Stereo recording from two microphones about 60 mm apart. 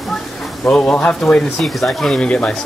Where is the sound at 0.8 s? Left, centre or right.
Left; by 2.2 s centre.